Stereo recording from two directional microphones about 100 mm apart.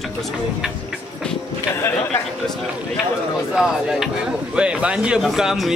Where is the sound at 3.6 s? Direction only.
10° right (ahead or behind).